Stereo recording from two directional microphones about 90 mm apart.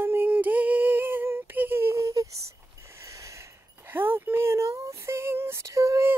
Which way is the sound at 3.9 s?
25° right (ahead or behind).